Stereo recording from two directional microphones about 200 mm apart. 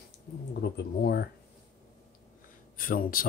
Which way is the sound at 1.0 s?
50° left (ahead or behind).